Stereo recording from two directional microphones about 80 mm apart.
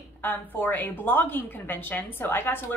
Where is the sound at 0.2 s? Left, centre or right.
Left.